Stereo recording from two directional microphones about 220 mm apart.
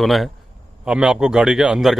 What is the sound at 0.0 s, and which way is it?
Speech, centre (ahead or behind).